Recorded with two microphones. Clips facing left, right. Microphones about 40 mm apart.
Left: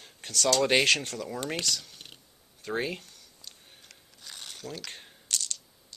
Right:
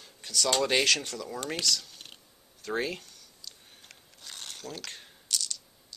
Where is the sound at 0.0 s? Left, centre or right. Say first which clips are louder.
Even; left.